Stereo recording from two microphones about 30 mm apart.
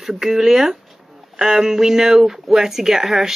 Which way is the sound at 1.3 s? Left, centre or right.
Centre.